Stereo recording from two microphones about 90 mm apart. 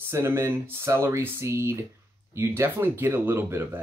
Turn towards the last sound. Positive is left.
turn(degrees=-25)  # may be behind; listen again after turning